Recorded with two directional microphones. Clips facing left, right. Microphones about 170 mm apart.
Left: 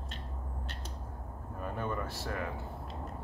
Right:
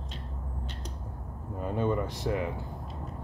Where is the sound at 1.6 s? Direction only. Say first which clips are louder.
Right 7 dB; 20° right (ahead or behind).